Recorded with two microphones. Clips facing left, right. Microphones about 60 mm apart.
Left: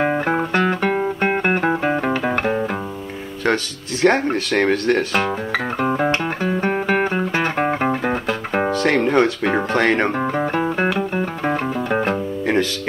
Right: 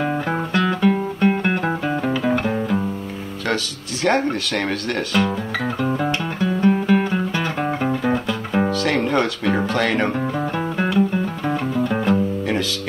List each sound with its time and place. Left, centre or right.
0.0 s music: left
3.4 s speech: left
5.8 s music: left
9.0 s music: centre
9.7 s speech: left
11.0 s music: left